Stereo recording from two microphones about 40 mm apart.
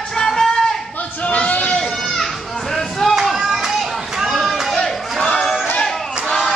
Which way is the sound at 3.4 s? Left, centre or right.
Centre.